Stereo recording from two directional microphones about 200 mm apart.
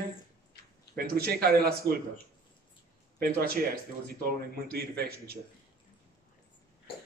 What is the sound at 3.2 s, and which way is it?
Speech, 50° right (ahead or behind).